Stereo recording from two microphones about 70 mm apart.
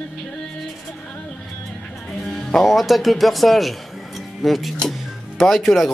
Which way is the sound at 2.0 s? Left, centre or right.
Centre.